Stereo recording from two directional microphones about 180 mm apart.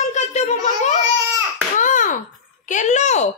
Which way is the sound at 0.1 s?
40° left (ahead or behind).